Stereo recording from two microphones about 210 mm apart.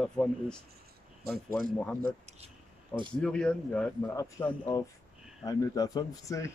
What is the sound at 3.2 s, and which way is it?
Speech, 5° left (ahead or behind).